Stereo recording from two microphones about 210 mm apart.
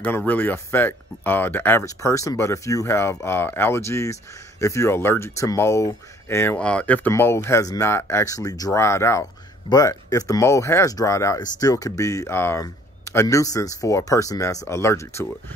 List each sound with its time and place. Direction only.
0.0 s speech: 5° left (ahead or behind)